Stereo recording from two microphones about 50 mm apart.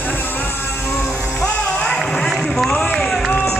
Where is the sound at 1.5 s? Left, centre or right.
Centre.